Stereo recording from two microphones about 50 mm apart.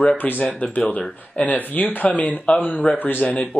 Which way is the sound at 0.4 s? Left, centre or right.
Left.